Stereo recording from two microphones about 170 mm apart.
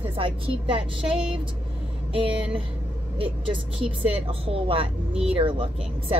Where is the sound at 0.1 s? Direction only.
30° right (ahead or behind).